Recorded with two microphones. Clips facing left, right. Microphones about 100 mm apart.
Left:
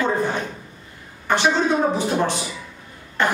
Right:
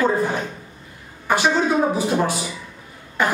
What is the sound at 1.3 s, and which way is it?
A woman's voice, 10° right (ahead or behind).